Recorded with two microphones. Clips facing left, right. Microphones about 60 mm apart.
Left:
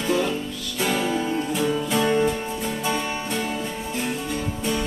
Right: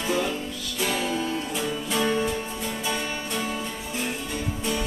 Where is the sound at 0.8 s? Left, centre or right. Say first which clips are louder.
Left 4 dB; centre.